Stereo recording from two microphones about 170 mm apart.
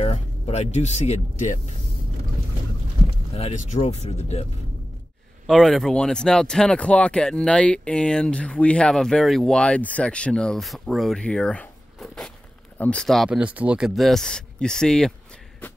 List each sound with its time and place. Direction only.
0.0 s speech: 40° left (ahead or behind)
3.3 s speech: 40° left (ahead or behind)
5.5 s speech: centre (ahead or behind)